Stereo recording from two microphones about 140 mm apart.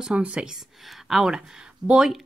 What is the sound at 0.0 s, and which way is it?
Speech, 10° right (ahead or behind).